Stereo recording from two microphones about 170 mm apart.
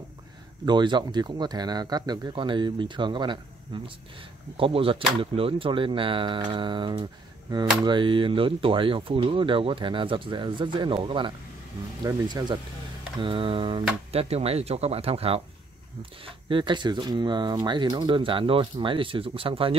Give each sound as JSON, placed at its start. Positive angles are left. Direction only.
{"t": 0.7, "sound": "speech", "side_deg": -25}